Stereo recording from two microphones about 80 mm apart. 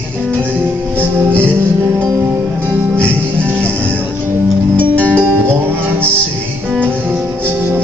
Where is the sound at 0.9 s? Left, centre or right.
Right.